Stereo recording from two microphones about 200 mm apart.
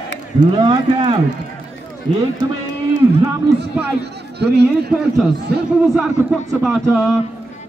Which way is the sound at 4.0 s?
55° right (ahead or behind).